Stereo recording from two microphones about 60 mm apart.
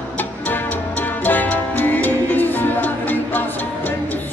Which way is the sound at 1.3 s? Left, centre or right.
Left.